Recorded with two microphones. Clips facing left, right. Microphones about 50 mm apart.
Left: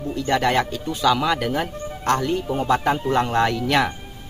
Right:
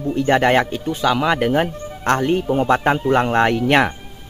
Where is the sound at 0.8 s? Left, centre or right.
Centre.